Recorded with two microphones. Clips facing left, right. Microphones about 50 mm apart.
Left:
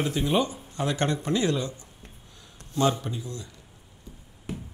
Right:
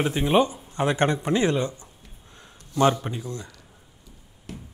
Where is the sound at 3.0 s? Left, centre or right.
Right.